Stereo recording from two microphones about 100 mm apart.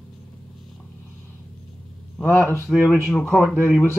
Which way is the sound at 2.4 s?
25° left (ahead or behind).